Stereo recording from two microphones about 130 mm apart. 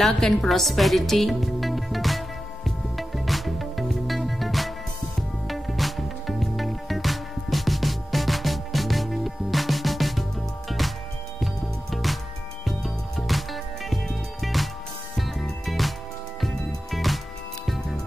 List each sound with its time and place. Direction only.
0.0 s music: centre (ahead or behind)